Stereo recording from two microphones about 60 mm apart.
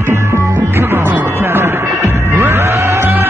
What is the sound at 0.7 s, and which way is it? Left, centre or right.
Music, right.